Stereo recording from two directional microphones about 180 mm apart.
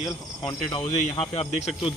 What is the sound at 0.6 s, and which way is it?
Speech, 30° left (ahead or behind).